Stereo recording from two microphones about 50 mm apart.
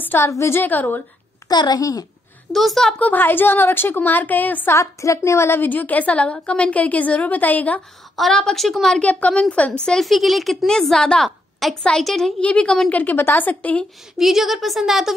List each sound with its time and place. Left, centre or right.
0.2 s a woman's voice: left
0.6 s a woman's voice: left
2.5 s a woman's voice: centre
3.0 s a woman's voice: left
4.7 s a woman's voice: left
5.6 s a woman's voice: left
8.2 s a woman's voice: centre
9.2 s a woman's voice: left
10.0 s a woman's voice: centre
10.7 s a woman's voice: centre
11.6 s a woman's voice: centre
12.4 s a woman's voice: left
12.9 s a woman's voice: left
14.1 s a woman's voice: centre